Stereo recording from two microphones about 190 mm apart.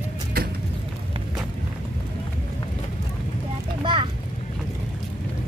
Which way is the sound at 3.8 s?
25° right (ahead or behind).